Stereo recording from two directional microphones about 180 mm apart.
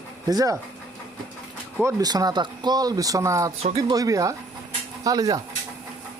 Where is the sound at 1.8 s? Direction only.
20° right (ahead or behind).